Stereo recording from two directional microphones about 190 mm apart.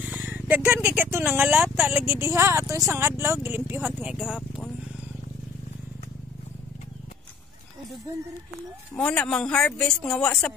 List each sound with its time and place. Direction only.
0.0 s a sound: 10° right (ahead or behind)
0.8 s speech: 10° right (ahead or behind)
8.1 s speech: 15° right (ahead or behind)
8.9 s speech: 5° left (ahead or behind)